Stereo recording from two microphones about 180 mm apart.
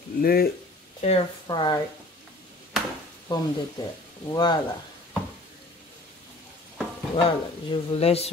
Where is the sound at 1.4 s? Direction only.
25° left (ahead or behind).